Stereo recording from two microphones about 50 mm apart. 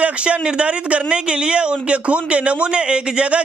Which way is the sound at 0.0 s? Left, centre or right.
Right.